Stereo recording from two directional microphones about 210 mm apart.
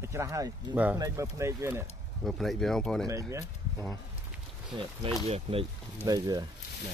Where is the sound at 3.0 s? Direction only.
15° right (ahead or behind).